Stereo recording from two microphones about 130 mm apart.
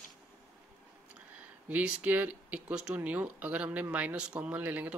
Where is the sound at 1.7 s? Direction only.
10° right (ahead or behind).